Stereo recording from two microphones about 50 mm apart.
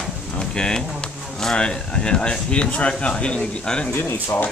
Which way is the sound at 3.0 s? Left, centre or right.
Centre.